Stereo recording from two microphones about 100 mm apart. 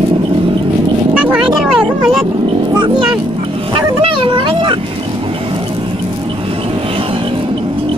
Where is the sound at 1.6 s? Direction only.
5° right (ahead or behind).